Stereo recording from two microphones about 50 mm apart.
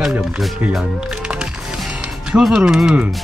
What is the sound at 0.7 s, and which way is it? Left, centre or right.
Music, centre.